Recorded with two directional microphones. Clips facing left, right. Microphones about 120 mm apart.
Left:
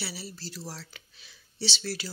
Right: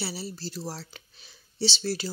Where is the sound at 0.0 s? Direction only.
30° right (ahead or behind).